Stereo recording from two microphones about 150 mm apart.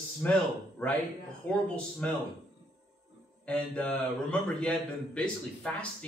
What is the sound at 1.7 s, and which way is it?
Speech, 10° left (ahead or behind).